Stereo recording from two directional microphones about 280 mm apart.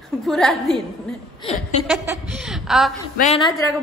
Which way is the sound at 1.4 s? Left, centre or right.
Left.